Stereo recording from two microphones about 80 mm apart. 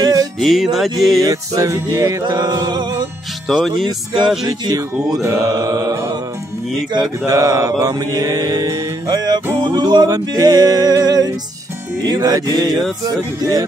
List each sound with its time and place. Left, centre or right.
0.0 s music: right
0.4 s music: centre
1.2 s music: right
2.2 s music: right
3.4 s music: centre
4.5 s music: right
7.2 s music: right